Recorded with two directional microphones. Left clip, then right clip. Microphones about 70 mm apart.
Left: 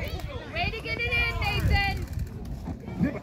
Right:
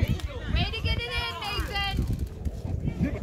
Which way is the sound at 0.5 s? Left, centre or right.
Right.